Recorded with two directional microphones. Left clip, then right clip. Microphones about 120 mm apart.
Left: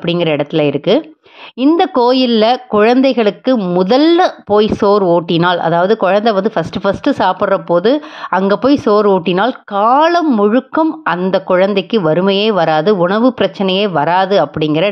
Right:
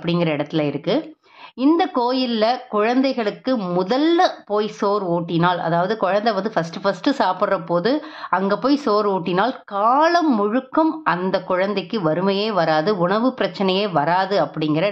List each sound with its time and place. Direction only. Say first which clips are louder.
0.0 s speech: left 7 dB; 45° left (ahead or behind)